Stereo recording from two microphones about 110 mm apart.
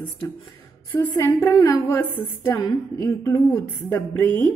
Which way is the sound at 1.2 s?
25° left (ahead or behind).